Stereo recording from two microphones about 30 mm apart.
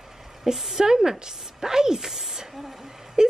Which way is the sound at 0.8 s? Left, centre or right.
Right.